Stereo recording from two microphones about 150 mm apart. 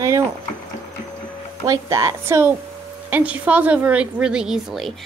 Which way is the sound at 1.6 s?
20° right (ahead or behind).